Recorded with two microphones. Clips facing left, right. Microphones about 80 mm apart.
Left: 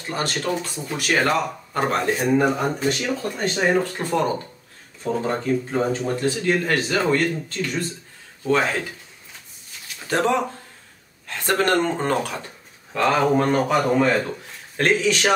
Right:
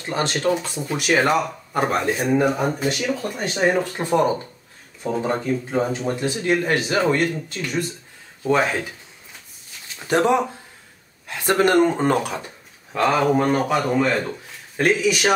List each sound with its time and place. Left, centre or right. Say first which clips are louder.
0.1 s speech: right 3 dB; right
10.0 s speech: right 3 dB; centre
13.7 s a man's voice: left 1 dB; centre
14.8 s speech: right 1 dB; centre